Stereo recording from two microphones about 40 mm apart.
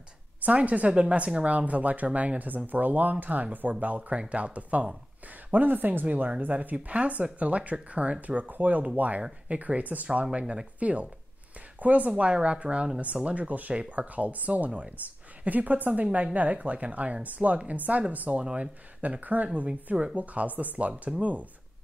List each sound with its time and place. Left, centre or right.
0.4 s speech: right
5.5 s speech: right
10.3 s speech: right
10.8 s speech: right
18.4 s speech: right